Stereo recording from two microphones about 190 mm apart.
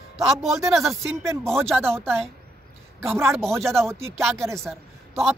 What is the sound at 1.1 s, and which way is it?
Speech, 15° right (ahead or behind).